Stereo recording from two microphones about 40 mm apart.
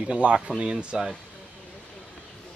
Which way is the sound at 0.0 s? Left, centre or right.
Right.